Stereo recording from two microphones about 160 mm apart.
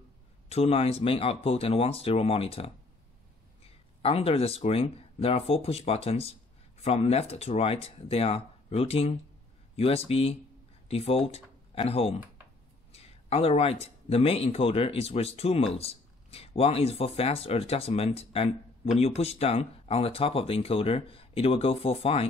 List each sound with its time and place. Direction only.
0.5 s speech: 40° left (ahead or behind)